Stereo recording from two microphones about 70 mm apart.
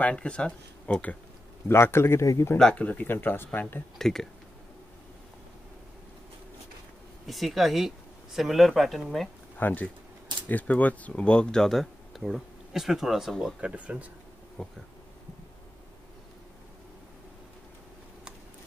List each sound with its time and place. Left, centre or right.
0.0 s speech: centre
1.7 s a man's voice: left
2.6 s speech: centre
4.0 s speech: centre
7.2 s speech: centre
9.6 s speech: left; by 13.6 s centre
13.6 s speech: centre
14.6 s speech: centre